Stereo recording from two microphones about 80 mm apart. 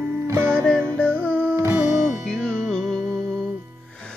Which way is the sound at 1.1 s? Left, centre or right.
Right.